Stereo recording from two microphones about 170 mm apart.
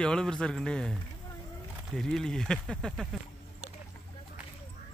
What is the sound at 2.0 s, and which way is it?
Speech, 5° left (ahead or behind).